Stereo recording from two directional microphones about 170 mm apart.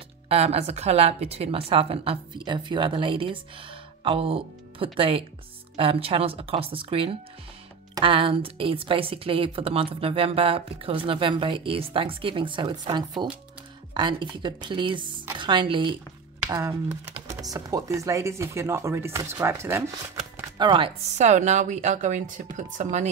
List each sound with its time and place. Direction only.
0.3 s a woman's voice: 35° right (ahead or behind)
16.4 s speech: 15° right (ahead or behind)
20.5 s speech: 30° right (ahead or behind); by 23.0 s 45° right (ahead or behind)